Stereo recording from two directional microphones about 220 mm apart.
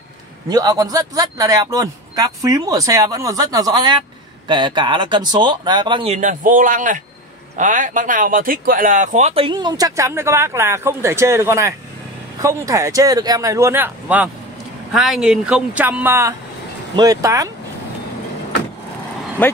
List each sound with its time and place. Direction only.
0.5 s speech: 15° right (ahead or behind)
19.4 s speech: 5° left (ahead or behind)